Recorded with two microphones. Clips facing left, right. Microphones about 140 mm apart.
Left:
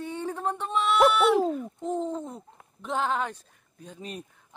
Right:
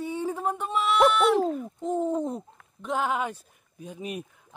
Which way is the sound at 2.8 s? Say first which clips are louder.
Right 1 dB; 5° right (ahead or behind).